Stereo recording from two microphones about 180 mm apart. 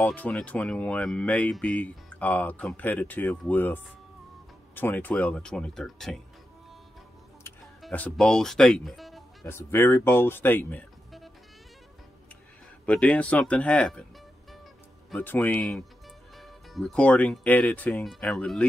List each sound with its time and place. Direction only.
0.0 s speech: 10° left (ahead or behind)
7.8 s speech: 5° left (ahead or behind)
9.4 s speech: 15° left (ahead or behind)
12.8 s speech: 5° left (ahead or behind)
15.0 s speech: 10° left (ahead or behind)